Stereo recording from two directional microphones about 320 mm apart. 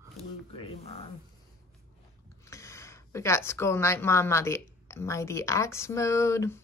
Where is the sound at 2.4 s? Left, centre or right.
Centre.